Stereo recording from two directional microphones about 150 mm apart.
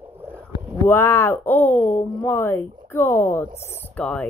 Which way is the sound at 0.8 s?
15° left (ahead or behind).